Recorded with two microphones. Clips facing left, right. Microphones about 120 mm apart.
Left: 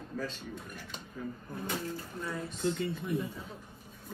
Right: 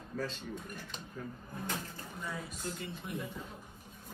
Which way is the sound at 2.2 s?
5° right (ahead or behind).